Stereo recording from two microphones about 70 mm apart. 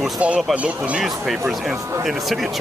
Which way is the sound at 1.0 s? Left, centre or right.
Centre.